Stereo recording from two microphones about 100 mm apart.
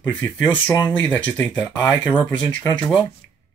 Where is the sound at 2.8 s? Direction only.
15° left (ahead or behind).